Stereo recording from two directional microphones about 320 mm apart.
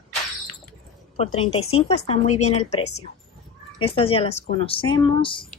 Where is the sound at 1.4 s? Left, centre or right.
Centre.